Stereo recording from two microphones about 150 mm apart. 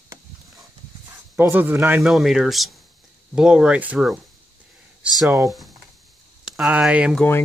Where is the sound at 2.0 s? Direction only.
Centre (ahead or behind).